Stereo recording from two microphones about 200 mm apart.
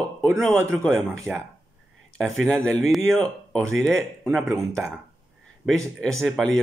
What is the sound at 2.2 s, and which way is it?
Speech, centre (ahead or behind).